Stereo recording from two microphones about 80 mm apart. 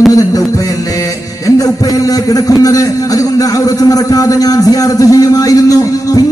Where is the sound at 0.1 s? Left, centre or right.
Left.